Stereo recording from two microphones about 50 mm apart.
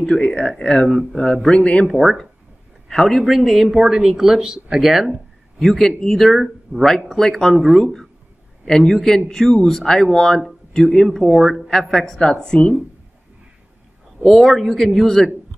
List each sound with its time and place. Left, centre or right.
0.0 s speech: centre
1.9 s a man's voice: centre
5.6 s a man's voice: centre
7.1 s speech: centre
8.6 s a man's voice: centre
14.2 s a man's voice: centre